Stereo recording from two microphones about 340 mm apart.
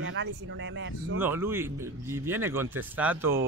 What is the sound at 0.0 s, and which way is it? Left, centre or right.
Speech, right.